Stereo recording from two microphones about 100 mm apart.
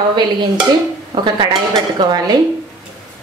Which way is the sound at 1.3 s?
45° right (ahead or behind).